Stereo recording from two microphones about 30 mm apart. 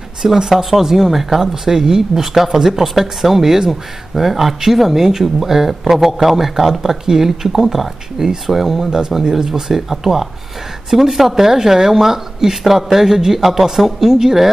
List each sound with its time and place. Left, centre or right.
0.4 s speech: centre